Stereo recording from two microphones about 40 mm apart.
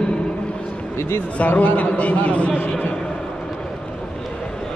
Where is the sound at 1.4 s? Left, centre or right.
Left.